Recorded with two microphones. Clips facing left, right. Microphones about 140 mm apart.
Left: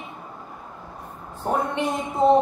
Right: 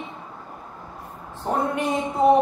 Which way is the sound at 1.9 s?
10° right (ahead or behind).